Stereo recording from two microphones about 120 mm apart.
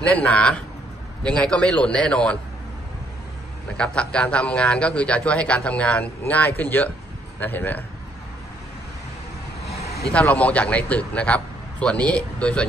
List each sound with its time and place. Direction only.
0.0 s speech: 10° left (ahead or behind)
3.7 s speech: 10° left (ahead or behind)
9.7 s vehicle: 5° left (ahead or behind)
10.2 s speech: 10° left (ahead or behind)